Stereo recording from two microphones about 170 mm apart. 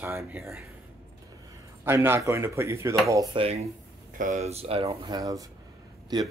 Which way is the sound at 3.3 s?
30° right (ahead or behind).